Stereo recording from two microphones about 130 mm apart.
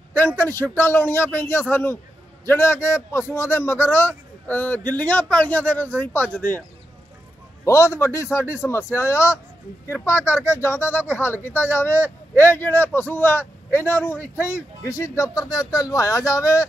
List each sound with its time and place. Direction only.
0.4 s a man's voice: 15° left (ahead or behind)
7.6 s a man's voice: 20° left (ahead or behind)